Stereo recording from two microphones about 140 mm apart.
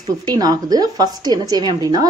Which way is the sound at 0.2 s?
30° right (ahead or behind).